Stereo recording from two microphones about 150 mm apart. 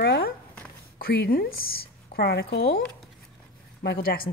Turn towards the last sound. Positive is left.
turn(degrees=80)